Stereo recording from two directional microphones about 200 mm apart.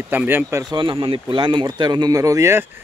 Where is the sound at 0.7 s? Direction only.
25° right (ahead or behind).